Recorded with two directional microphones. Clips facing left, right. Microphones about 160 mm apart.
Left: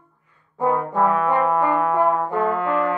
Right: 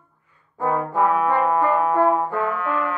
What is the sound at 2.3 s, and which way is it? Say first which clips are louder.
Brass instrument: left 3 dB; 20° left (ahead or behind).